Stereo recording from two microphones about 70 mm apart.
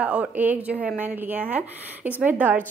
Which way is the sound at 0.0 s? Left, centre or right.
Right.